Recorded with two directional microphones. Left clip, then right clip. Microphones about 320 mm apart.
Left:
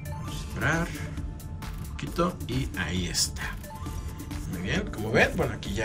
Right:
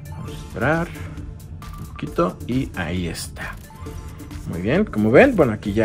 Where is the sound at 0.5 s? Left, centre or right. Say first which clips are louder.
Right 7 dB; centre.